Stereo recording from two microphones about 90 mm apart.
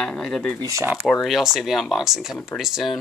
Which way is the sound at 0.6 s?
35° right (ahead or behind).